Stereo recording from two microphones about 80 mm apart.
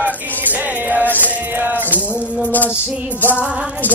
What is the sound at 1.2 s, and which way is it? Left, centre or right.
Music, right.